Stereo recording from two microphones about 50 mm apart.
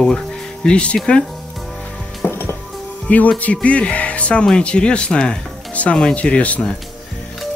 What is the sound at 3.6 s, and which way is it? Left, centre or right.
Music, left.